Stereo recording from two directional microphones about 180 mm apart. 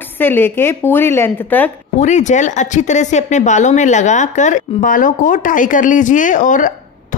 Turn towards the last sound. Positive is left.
turn(degrees=45)  # may be behind; listen again after turning